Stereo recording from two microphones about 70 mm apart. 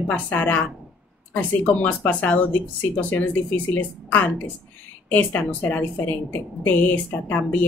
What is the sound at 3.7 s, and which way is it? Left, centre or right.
Speech, left.